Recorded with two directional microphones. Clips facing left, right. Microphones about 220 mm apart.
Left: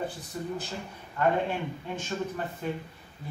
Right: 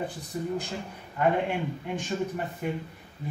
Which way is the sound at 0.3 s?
15° right (ahead or behind).